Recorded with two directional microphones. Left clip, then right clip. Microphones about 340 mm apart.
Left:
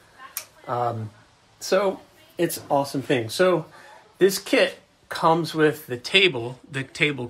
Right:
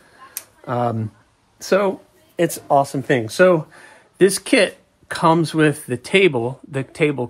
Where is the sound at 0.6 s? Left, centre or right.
Right.